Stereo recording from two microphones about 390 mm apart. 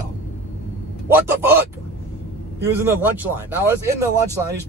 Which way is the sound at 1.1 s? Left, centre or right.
Centre.